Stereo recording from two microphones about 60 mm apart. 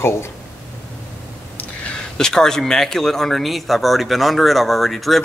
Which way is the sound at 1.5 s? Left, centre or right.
Left.